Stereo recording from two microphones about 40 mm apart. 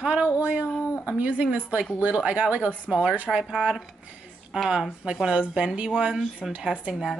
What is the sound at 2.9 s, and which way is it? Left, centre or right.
Speech, right.